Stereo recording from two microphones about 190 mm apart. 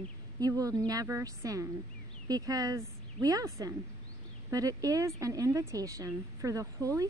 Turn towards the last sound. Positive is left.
turn(degrees=-15)  # may be behind; listen again after turning